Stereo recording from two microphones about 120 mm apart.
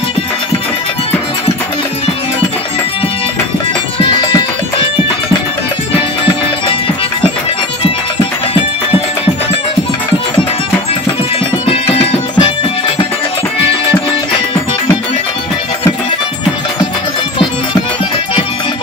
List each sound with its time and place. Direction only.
4.0 s music: 40° left (ahead or behind)
11.6 s music: 50° left (ahead or behind)